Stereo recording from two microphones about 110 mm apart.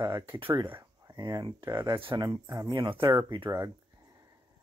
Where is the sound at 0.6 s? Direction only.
20° right (ahead or behind).